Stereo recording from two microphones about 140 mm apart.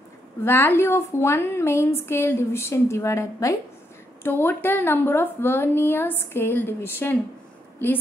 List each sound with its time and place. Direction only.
0.4 s a woman's voice: 15° left (ahead or behind)